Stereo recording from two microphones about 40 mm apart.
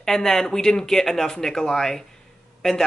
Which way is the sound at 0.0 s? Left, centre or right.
Centre.